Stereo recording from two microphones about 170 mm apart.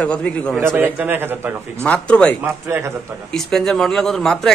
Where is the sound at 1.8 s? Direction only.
5° left (ahead or behind).